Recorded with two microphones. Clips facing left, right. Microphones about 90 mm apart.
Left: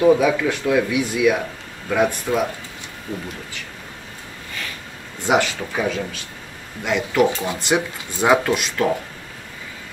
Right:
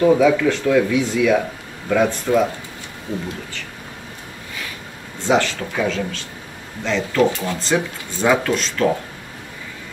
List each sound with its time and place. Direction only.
0.0 s speech: 10° left (ahead or behind)
5.2 s speech: 15° left (ahead or behind)